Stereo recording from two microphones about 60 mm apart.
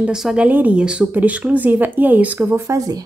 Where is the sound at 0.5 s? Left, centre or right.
Right.